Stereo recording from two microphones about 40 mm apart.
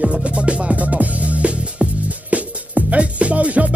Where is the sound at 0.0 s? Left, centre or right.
Right.